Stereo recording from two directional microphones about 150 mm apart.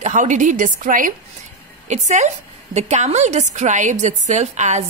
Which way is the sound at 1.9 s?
50° right (ahead or behind).